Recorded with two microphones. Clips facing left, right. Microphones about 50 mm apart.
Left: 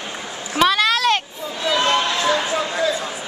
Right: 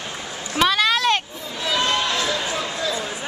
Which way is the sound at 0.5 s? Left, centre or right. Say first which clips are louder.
Left 2 dB; centre.